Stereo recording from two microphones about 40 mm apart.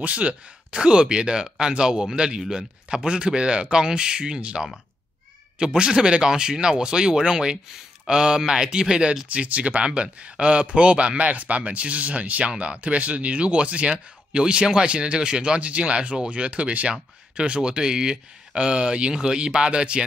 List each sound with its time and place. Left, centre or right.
0.0 s speech: right
9.3 s speech: right